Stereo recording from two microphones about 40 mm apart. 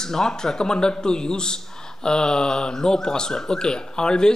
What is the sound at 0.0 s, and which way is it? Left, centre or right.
Speech, centre.